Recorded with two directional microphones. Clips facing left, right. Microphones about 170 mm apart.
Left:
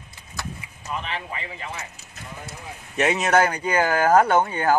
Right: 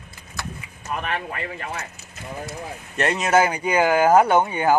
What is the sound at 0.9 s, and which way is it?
Speech, 55° right (ahead or behind).